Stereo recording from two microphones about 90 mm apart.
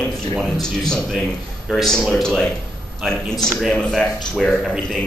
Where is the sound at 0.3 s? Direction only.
5° left (ahead or behind).